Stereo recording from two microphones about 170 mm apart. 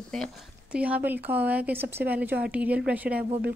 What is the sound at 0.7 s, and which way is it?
Speech, 10° right (ahead or behind).